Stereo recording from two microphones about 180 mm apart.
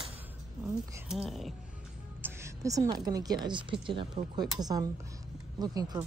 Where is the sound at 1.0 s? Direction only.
Centre (ahead or behind).